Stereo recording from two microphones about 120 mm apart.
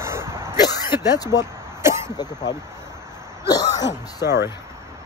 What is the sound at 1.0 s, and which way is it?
Speech, 30° left (ahead or behind).